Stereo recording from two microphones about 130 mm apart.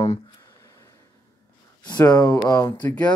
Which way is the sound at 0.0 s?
25° left (ahead or behind).